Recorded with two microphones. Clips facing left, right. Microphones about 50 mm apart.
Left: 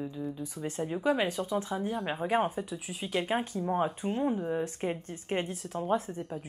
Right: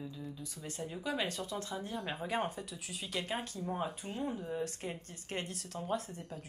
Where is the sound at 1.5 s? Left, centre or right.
Centre.